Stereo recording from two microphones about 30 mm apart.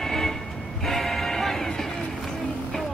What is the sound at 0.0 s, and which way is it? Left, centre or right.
Music, centre.